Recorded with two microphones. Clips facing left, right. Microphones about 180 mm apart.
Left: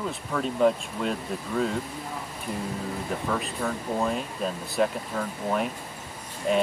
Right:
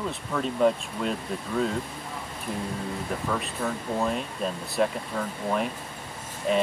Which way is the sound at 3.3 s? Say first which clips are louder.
Left 1 dB; centre (ahead or behind).